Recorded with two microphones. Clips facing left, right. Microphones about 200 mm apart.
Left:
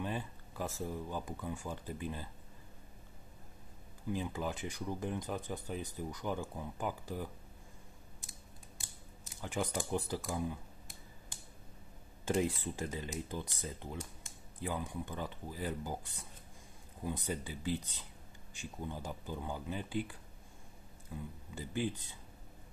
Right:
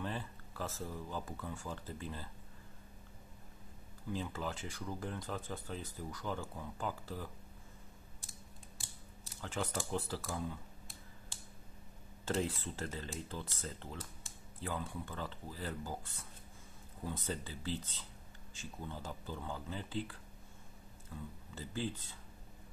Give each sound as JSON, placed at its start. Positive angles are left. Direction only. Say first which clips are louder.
{"t": 0.0, "sound": "speech", "louder": "left 2 dB", "side_deg": 15}
{"t": 4.1, "sound": "speech", "louder": "left 3 dB", "side_deg": 15}
{"t": 9.3, "sound": "speech", "louder": "left 2 dB", "side_deg": 15}
{"t": 12.3, "sound": "speech", "louder": "left 3 dB", "side_deg": 15}